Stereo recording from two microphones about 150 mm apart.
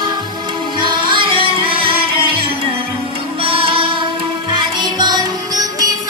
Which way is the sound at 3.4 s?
35° right (ahead or behind).